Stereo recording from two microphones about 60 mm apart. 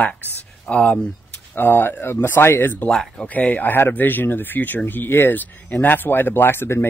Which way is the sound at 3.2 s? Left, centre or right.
Left.